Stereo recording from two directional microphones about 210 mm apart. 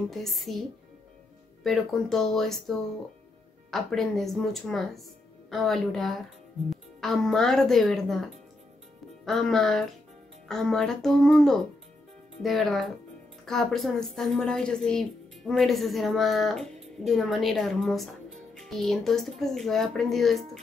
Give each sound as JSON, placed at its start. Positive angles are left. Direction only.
{"t": 0.1, "sound": "a child's voice", "side_deg": 0}
{"t": 1.6, "sound": "a child's voice", "side_deg": 0}